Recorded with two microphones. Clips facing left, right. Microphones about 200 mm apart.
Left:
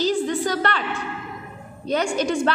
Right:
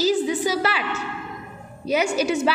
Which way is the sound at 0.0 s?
5° right (ahead or behind).